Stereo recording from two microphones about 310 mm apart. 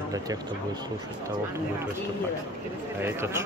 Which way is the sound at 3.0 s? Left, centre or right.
Centre.